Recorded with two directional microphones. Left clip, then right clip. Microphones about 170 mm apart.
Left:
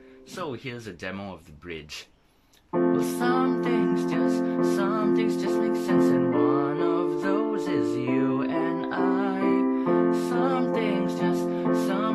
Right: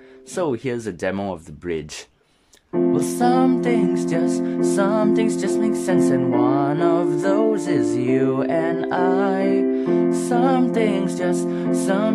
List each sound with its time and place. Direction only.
0.4 s music: 40° right (ahead or behind)
2.9 s music: 40° right (ahead or behind)